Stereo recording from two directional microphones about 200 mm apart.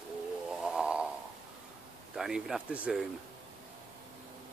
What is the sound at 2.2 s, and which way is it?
Speech, centre (ahead or behind).